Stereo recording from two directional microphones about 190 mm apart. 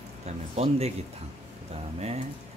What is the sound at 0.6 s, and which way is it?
Speech, 30° right (ahead or behind).